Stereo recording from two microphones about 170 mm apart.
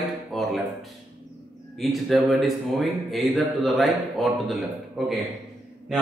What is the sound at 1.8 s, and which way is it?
A man's voice, centre (ahead or behind).